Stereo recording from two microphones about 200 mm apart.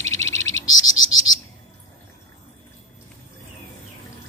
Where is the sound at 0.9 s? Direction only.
80° left.